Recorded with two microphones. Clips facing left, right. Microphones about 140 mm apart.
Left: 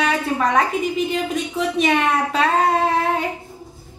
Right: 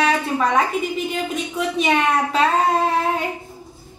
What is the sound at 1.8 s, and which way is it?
Speech, centre (ahead or behind).